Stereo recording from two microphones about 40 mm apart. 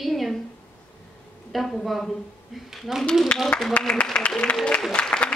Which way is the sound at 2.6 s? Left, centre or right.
Centre.